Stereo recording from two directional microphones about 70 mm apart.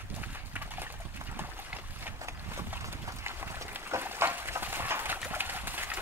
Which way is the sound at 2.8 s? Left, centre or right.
Right.